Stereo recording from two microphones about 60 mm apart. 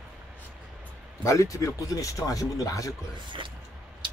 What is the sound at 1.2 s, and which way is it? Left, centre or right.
Speech, left.